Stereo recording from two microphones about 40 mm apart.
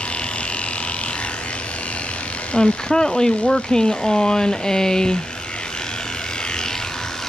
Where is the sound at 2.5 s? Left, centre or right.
Centre.